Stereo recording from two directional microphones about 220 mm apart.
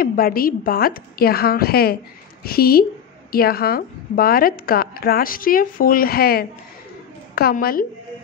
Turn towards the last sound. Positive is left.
turn(degrees=40)  # may be behind; listen again after turning